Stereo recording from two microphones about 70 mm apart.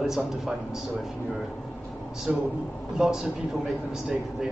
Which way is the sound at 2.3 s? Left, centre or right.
Centre.